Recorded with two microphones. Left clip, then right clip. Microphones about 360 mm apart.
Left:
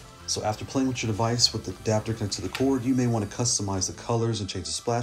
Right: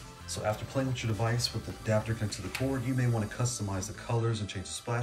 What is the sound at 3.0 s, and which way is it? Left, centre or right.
Speech, centre.